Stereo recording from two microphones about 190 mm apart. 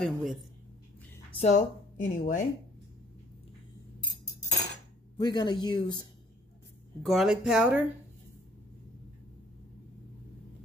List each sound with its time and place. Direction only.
0.0 s speech: centre (ahead or behind)
1.4 s speech: 40° left (ahead or behind)
5.2 s speech: 20° left (ahead or behind)
7.1 s speech: centre (ahead or behind)